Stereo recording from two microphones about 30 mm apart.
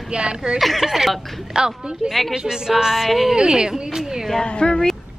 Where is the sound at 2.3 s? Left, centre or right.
Right.